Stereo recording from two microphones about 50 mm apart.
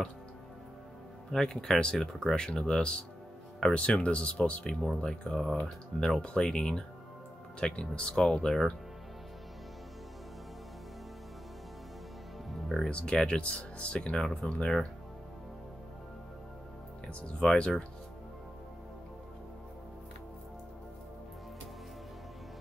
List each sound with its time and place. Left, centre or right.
1.3 s speech: centre
4.8 s speech: centre
12.6 s music: centre
12.9 s speech: centre
17.4 s speech: centre